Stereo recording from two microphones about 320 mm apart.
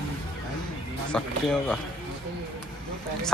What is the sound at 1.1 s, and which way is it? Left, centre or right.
Speech, centre.